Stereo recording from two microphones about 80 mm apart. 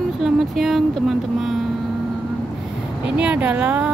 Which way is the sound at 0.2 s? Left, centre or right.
Centre.